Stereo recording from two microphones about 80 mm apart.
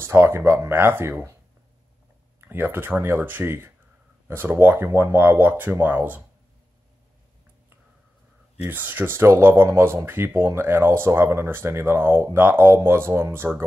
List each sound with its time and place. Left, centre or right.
0.0 s speech: right
2.4 s speech: right
8.6 s speech: right